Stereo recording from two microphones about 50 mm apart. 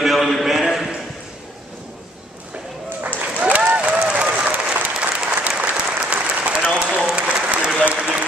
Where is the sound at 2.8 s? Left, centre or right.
Right.